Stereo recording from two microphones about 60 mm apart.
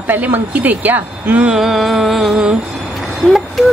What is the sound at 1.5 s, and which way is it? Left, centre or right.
Speech, centre.